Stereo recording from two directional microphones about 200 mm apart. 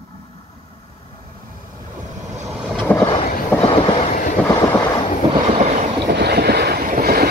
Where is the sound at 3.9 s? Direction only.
40° left (ahead or behind).